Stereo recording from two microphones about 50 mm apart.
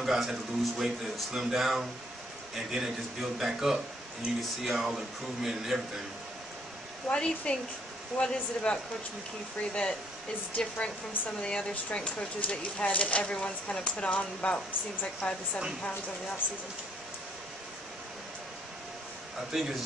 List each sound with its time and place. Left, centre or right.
0.0 s speech: centre
7.1 s speech: centre
19.5 s a man's voice: centre